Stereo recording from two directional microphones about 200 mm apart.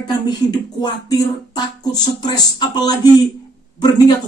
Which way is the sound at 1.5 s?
20° left (ahead or behind).